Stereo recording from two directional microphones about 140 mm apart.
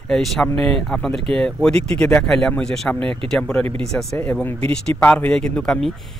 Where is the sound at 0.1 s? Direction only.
5° left (ahead or behind).